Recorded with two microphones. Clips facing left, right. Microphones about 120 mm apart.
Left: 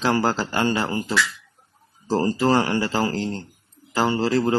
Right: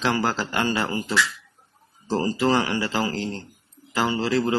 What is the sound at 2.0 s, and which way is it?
A man's voice, 35° left (ahead or behind).